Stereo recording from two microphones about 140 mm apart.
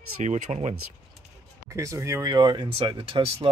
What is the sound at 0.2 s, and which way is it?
Speech, 55° right (ahead or behind).